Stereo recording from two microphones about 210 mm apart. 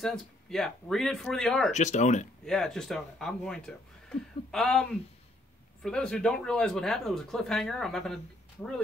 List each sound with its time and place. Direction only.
0.0 s speech: centre (ahead or behind)
1.7 s speech: 35° left (ahead or behind)
2.4 s speech: centre (ahead or behind)